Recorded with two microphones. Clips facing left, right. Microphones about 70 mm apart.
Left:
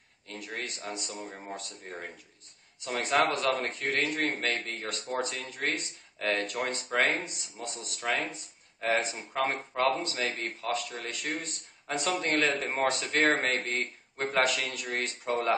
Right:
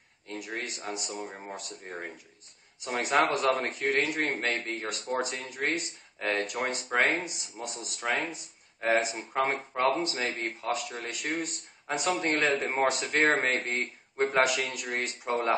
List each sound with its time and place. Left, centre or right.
0.4 s speech: centre
6.4 s speech: centre